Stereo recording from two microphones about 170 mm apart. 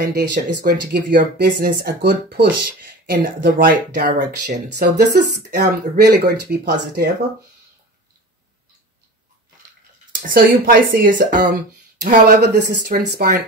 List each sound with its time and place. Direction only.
0.7 s speech: 85° right
10.2 s a woman's voice: 55° right (ahead or behind)
12.4 s speech: 70° right (ahead or behind)